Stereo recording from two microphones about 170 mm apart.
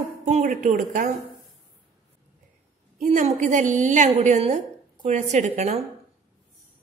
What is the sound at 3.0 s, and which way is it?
A woman's voice, 50° right (ahead or behind).